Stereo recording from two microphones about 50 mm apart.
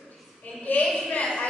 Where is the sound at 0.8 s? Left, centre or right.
Centre.